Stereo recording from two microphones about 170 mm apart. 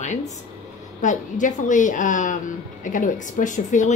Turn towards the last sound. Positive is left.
turn(degrees=45)  # may be behind; listen again after turning